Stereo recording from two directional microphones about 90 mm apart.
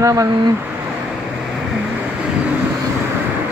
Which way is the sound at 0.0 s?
40° right (ahead or behind).